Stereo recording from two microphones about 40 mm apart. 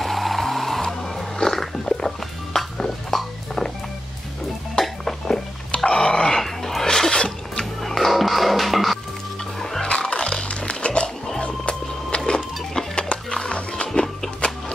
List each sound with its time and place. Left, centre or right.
0.0 s music: centre
4.7 s music: centre
5.9 s dog: centre
7.8 s music: centre
9.6 s music: centre
9.8 s music: left